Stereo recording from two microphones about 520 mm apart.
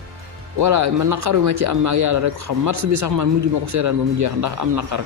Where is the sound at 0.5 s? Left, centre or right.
Right.